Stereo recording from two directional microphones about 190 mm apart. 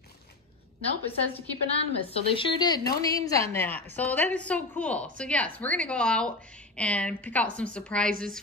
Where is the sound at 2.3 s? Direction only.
25° left (ahead or behind).